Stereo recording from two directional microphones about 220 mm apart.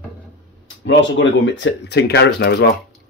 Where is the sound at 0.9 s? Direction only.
55° left (ahead or behind).